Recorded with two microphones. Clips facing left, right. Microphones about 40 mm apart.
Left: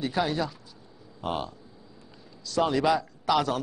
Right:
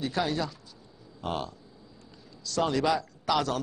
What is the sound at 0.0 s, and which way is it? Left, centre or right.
A man's voice, centre.